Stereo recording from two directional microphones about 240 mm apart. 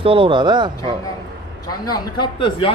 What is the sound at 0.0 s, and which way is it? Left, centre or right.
Speech, right.